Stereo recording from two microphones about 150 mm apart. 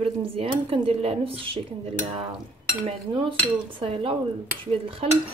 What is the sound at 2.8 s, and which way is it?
Speech, 35° right (ahead or behind).